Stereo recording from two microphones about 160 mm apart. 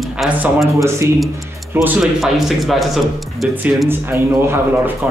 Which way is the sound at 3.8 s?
15° right (ahead or behind).